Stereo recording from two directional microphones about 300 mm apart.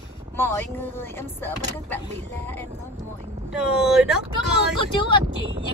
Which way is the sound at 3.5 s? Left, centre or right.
Centre.